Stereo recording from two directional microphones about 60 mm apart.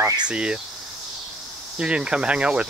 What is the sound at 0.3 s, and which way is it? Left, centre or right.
Speech, centre.